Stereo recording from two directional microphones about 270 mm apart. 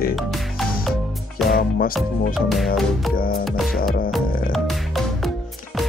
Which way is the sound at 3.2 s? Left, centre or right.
Left.